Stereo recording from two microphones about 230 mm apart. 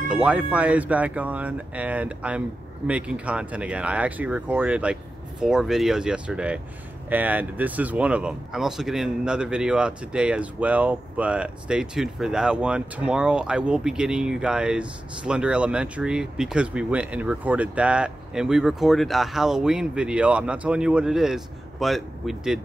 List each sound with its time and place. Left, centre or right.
0.1 s speech: centre